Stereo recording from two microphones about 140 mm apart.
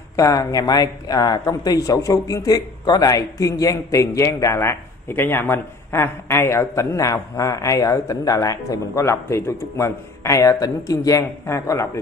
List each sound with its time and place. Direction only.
0.1 s speech: 25° left (ahead or behind)